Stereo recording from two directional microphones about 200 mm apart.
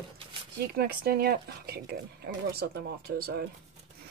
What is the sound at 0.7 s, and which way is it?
Speech, 50° right (ahead or behind).